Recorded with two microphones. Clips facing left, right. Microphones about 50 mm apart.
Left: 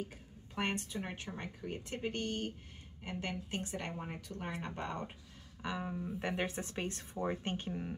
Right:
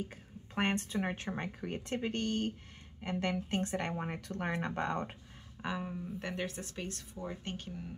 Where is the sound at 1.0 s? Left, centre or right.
Right.